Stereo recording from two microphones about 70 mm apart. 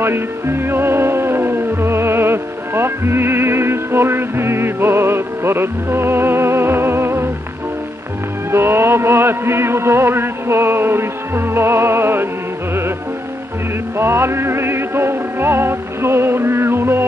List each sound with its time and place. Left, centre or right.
0.0 s music: right
8.5 s music: right
13.9 s music: right